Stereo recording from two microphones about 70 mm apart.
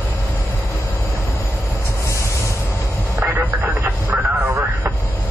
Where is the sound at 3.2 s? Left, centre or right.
Right.